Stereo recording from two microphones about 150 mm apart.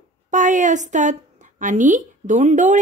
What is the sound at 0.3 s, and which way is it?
A woman's voice, 55° right (ahead or behind).